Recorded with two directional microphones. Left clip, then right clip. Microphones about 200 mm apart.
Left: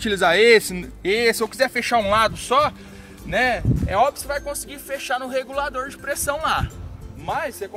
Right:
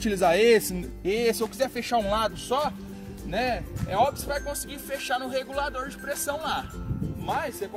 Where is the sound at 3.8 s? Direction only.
5° right (ahead or behind).